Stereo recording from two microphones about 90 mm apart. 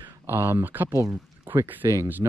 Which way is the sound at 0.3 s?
25° right (ahead or behind).